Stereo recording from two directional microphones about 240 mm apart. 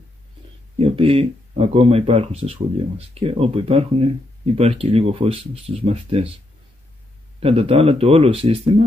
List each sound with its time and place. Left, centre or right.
0.7 s speech: right
7.3 s speech: right